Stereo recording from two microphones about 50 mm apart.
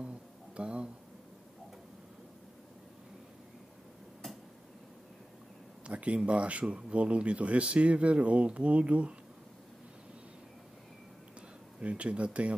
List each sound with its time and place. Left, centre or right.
0.6 s speech: right
5.9 s speech: right
11.8 s speech: right